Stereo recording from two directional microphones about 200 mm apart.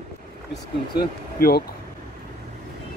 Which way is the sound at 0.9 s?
50° left (ahead or behind).